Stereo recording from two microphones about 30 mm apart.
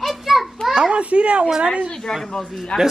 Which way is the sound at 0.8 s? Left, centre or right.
Right.